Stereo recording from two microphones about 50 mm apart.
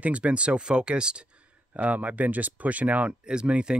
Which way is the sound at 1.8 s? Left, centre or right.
Right.